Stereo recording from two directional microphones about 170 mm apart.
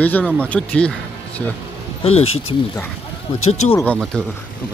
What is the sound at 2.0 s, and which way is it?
Speech, 35° left (ahead or behind).